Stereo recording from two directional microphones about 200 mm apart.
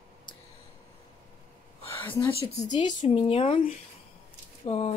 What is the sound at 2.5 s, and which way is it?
Speech, 35° left (ahead or behind).